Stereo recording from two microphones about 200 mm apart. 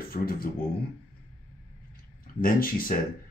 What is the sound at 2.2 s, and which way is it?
Speech, 45° left (ahead or behind).